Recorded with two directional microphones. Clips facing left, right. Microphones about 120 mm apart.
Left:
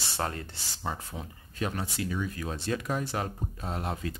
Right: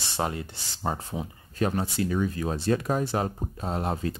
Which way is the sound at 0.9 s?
45° right (ahead or behind).